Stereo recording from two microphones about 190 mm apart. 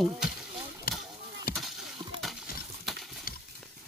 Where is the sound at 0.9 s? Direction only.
50° left (ahead or behind).